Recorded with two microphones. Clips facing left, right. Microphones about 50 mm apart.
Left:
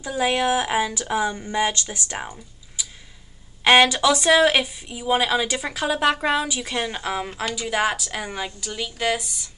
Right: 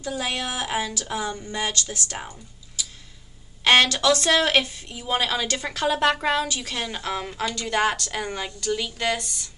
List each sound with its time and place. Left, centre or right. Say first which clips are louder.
0.0 s a woman's voice: left 6 dB; left; by 9.5 s centre